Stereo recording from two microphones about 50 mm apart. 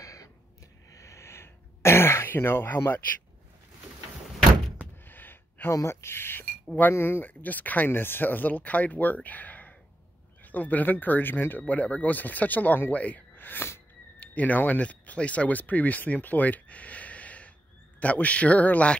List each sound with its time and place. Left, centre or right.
0.9 s throat clearing: left
2.2 s speech: left
5.0 s a sound: left
5.7 s speech: left
7.2 s speech: left
7.9 s speech: left